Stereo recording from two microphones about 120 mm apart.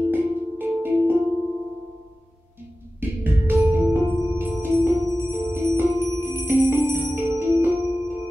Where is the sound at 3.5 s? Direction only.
15° right (ahead or behind).